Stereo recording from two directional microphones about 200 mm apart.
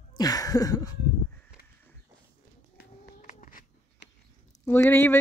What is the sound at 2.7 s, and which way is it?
Cat, 40° left (ahead or behind).